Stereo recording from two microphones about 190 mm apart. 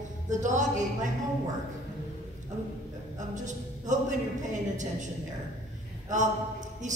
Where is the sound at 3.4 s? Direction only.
40° right (ahead or behind).